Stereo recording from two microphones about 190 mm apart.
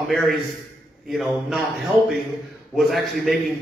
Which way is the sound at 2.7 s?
Centre (ahead or behind).